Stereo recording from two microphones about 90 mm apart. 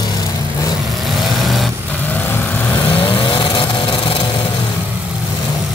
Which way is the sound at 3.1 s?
60° left (ahead or behind).